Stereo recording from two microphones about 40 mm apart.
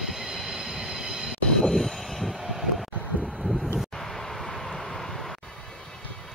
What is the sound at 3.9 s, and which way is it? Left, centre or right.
Vehicle, centre.